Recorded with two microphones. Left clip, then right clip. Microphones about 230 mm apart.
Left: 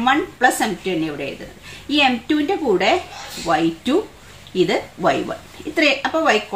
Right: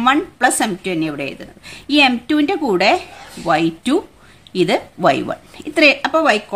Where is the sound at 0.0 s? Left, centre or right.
Right.